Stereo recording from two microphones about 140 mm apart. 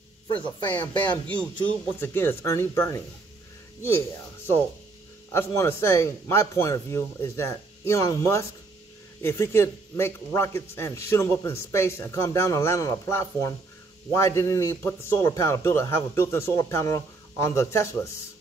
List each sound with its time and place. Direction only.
0.3 s speech: 35° left (ahead or behind)
1.1 s speech: 10° left (ahead or behind)
5.3 s a man's voice: 20° left (ahead or behind)